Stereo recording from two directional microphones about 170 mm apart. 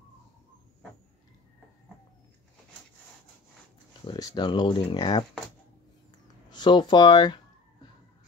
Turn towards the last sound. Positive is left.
turn(degrees=25)  # may be behind; listen again after turning